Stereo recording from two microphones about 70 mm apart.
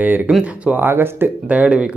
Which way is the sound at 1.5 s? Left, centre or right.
Centre.